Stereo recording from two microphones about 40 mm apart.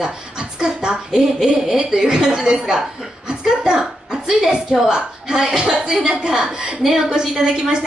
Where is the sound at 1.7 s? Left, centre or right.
Centre.